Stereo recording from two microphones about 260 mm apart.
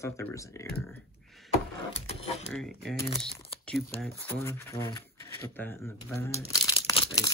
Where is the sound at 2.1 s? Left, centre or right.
Left.